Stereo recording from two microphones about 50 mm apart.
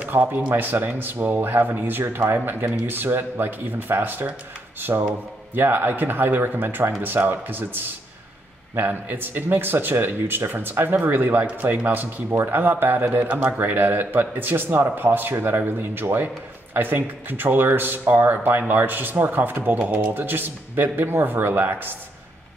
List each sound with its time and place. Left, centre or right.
0.1 s speech: right
11.4 s speech: right
11.8 s speech: right
19.8 s speech: right
20.2 s speech: right